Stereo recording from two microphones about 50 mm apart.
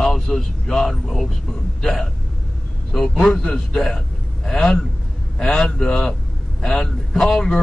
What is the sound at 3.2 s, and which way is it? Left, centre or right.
Speech, centre.